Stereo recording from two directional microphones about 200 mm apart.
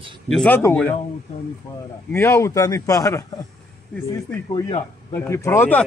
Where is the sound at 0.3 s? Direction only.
5° left (ahead or behind).